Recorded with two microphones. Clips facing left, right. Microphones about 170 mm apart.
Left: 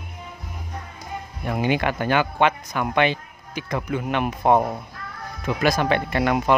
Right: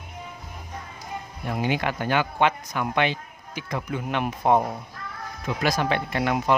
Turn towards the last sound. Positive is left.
turn(degrees=60)  # may be behind; listen again after turning